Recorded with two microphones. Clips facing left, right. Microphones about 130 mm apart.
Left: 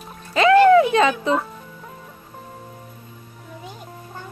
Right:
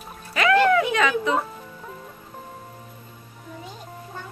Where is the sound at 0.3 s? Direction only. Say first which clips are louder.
Left 6 dB; 30° left (ahead or behind).